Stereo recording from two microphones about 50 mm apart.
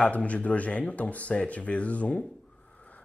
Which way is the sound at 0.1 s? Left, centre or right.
Left.